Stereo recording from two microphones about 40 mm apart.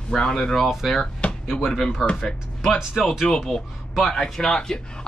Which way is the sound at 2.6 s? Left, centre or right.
Centre.